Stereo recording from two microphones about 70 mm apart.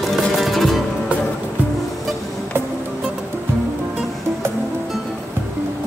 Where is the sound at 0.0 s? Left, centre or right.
Centre.